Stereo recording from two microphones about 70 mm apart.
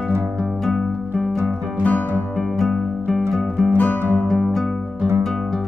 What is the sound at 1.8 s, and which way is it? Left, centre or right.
Music, left.